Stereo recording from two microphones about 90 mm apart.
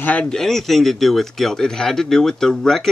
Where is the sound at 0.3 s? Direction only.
5° left (ahead or behind).